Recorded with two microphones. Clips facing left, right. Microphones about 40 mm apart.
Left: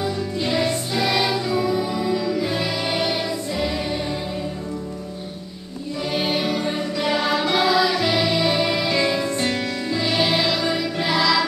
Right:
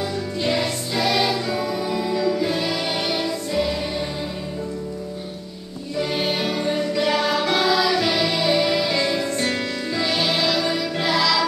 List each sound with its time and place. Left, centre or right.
0.4 s music: centre
5.9 s music: centre
10.2 s music: centre